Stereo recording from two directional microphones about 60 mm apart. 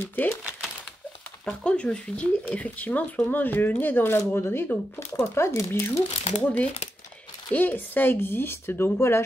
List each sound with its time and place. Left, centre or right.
0.0 s speech: left
1.4 s speech: centre; by 5.9 s left
6.4 s speech: left